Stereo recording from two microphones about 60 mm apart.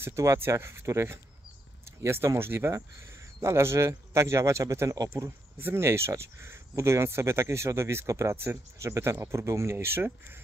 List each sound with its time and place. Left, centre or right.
0.0 s speech: right
2.7 s speech: right
5.8 s speech: right